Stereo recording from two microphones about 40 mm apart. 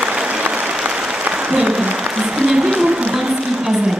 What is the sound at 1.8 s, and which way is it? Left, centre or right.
Applause, right.